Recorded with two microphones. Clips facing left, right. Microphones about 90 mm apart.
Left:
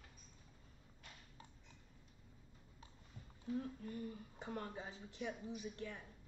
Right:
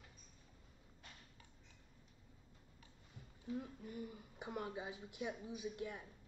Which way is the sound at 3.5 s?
10° right (ahead or behind).